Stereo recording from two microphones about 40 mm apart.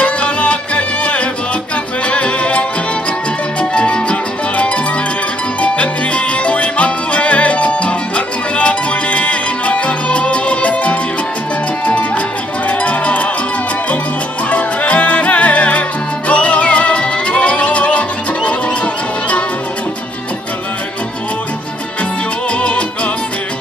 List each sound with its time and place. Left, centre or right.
0.0 s music: left
3.7 s music: left
12.6 s music: left
14.5 s music: left
22.5 s music: left